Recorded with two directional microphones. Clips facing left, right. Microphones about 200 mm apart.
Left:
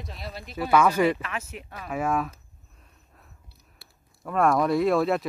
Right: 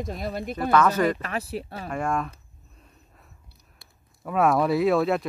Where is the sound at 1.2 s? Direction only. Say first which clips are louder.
Right 5 dB; 35° right (ahead or behind).